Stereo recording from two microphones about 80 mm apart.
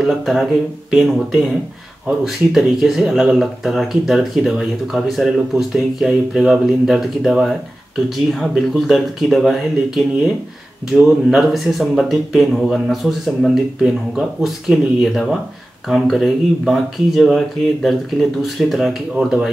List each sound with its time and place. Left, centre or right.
0.0 s speech: centre